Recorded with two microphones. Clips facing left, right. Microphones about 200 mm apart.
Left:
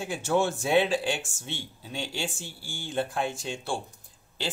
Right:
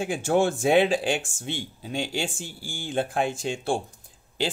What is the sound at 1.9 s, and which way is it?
Speech, 50° right (ahead or behind).